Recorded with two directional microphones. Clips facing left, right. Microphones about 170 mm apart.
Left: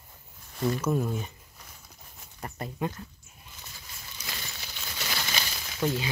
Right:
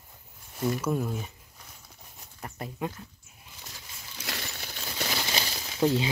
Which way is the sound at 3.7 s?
80° right.